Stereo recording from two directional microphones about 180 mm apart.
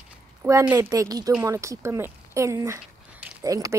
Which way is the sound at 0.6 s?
15° right (ahead or behind).